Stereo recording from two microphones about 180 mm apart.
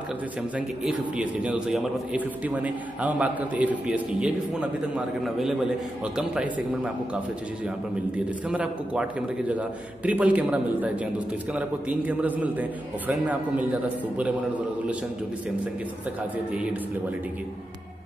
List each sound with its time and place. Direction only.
0.6 s a man's voice: 5° right (ahead or behind)